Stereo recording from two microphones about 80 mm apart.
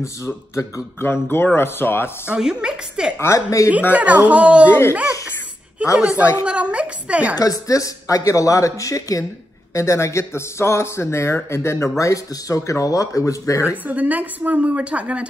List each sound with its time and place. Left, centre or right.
0.6 s speech: left
1.0 s speech: left
2.2 s a woman's voice: centre
3.2 s speech: left
3.9 s a woman's voice: centre
4.6 s speech: left
5.9 s a woman's voice: centre
7.3 s speech: left
13.7 s speech: centre